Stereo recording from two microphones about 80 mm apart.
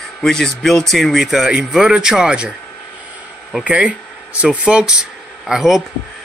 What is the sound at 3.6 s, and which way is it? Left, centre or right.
Speech, centre.